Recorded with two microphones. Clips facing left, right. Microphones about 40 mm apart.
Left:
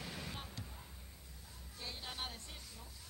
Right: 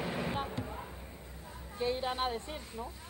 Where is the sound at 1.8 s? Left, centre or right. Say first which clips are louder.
Right 13 dB; right.